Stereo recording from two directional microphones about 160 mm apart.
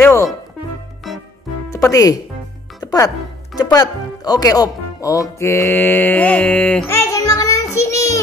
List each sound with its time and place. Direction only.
0.0 s music: 20° left (ahead or behind)
1.7 s speech: 20° left (ahead or behind)
2.8 s music: 25° left (ahead or behind)
3.5 s speech: 25° left (ahead or behind); by 6.8 s 5° left (ahead or behind)
6.9 s a sound: 15° left (ahead or behind)